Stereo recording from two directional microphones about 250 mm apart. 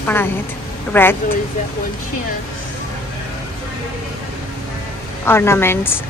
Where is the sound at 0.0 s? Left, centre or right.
Centre.